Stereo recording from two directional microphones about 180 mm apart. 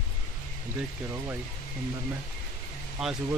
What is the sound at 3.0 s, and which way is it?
Speech, centre (ahead or behind).